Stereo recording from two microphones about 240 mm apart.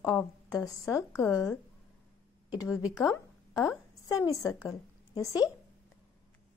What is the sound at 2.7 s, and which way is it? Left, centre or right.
Speech, centre.